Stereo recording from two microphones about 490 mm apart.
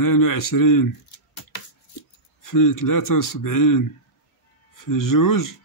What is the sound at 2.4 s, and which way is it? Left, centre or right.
Speech, left.